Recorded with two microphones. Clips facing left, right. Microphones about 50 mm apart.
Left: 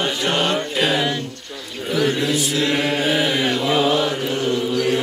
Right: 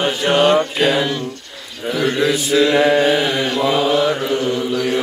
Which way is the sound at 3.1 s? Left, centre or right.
Centre.